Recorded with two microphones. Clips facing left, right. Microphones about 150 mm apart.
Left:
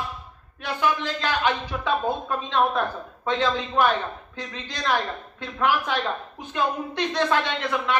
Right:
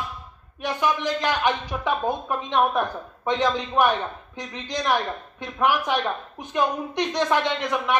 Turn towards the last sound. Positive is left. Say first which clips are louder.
# right 1 dB
turn(degrees=-15)  # may be behind; listen again after turning